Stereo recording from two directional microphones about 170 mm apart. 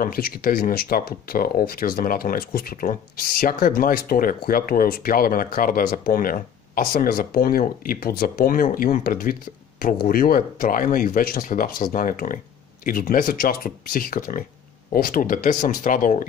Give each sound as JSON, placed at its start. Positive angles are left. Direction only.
{"t": 0.0, "sound": "speech", "side_deg": 60}